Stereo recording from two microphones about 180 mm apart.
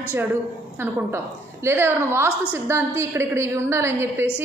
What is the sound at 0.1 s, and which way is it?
A woman's voice, 10° right (ahead or behind).